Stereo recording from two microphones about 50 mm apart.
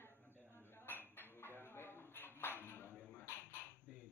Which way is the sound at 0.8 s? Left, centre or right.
Left.